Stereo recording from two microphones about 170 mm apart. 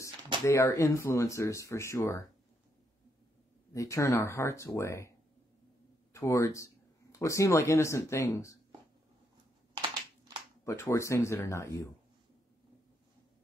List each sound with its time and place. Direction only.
0.5 s speech: 15° left (ahead or behind)
3.7 s speech: 20° left (ahead or behind)
6.1 s speech: 20° left (ahead or behind)
10.6 s speech: 15° left (ahead or behind)